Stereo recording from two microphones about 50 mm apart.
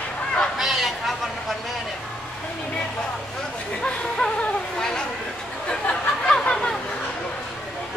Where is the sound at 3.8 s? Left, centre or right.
Left.